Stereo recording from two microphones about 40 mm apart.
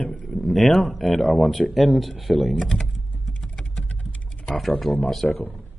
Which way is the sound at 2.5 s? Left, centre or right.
Centre.